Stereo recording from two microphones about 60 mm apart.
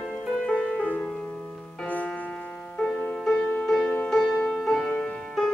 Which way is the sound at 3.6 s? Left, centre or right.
Centre.